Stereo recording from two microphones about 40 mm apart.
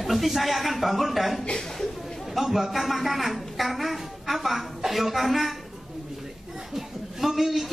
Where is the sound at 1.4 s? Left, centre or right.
Left.